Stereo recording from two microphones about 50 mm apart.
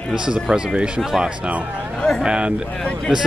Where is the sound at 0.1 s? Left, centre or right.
Centre.